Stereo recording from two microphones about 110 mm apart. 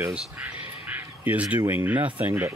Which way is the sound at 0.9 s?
15° right (ahead or behind).